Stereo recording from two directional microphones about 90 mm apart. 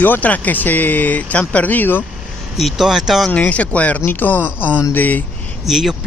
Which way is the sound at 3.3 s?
15° left (ahead or behind).